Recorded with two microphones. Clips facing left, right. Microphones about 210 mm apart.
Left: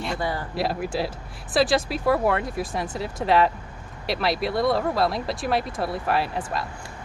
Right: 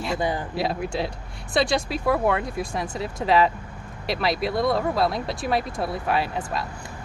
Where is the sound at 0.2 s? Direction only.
20° right (ahead or behind).